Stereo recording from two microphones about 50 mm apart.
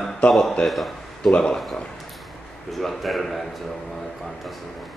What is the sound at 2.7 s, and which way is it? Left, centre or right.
Speech, centre.